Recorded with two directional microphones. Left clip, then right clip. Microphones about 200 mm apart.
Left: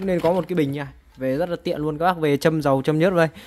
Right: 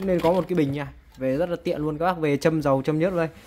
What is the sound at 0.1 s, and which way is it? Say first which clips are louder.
Speech: left 1 dB; 15° left (ahead or behind).